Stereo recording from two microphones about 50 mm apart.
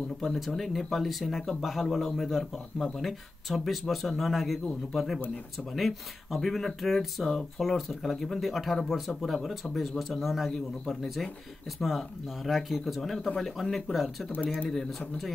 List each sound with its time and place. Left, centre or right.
0.2 s speech: centre